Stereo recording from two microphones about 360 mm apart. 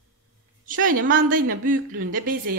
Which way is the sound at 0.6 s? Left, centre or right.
Right.